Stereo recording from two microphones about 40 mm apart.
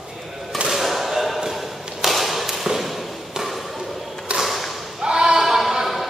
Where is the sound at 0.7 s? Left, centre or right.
Centre.